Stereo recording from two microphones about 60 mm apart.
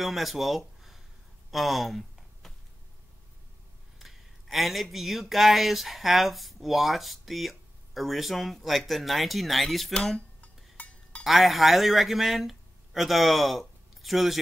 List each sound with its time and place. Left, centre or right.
0.0 s speech: centre
1.5 s a sound: centre
4.0 s speech: centre
10.1 s dishes: left
11.2 s speech: centre